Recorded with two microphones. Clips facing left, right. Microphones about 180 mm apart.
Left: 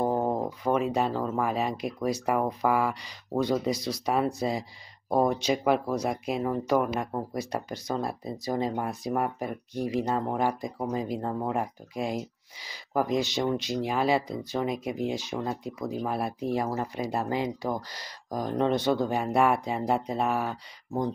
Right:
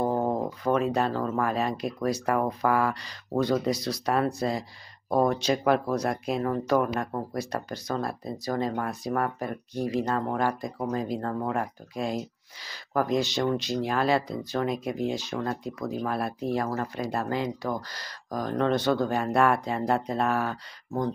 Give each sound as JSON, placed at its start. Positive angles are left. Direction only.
{"t": 0.0, "sound": "speech", "side_deg": 10}